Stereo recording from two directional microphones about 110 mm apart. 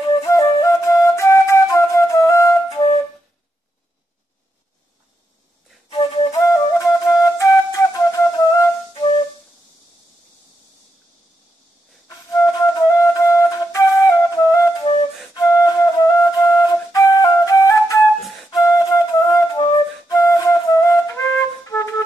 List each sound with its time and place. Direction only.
0.2 s flute: 30° left (ahead or behind)
2.7 s flute: 60° left (ahead or behind)
5.9 s flute: 50° left (ahead or behind)
6.3 s flute: 25° left (ahead or behind)
8.9 s flute: 50° left (ahead or behind)
12.3 s flute: 35° left (ahead or behind)